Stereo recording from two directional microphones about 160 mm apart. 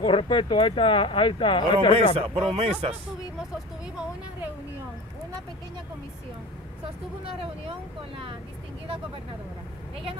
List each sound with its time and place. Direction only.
0.0 s speech: 35° left (ahead or behind)
2.1 s speech: 35° right (ahead or behind)